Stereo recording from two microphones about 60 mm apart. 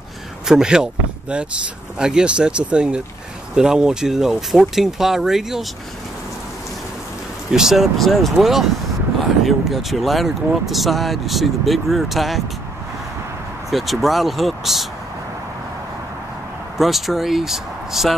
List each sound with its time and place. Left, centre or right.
0.5 s speech: centre
2.0 s speech: centre
7.5 s speech: centre
13.7 s speech: centre
16.7 s speech: centre